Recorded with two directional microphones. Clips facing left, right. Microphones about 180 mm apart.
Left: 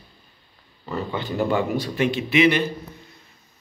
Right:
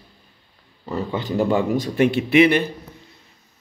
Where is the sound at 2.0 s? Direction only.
55° right (ahead or behind).